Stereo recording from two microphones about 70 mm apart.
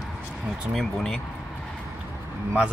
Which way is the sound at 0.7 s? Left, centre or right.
Centre.